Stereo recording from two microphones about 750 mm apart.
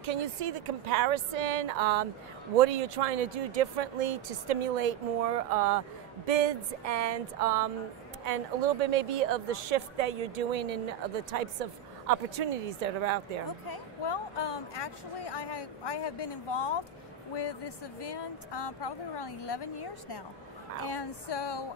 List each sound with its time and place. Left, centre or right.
0.0 s a woman's voice: right
13.7 s speech: left